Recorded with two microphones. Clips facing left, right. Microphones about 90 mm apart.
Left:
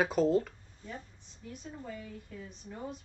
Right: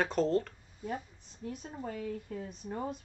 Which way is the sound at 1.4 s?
55° right (ahead or behind).